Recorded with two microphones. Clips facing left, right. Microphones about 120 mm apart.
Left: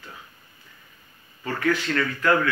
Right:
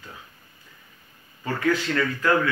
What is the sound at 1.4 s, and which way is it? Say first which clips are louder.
Speech: right 1 dB; 15° right (ahead or behind).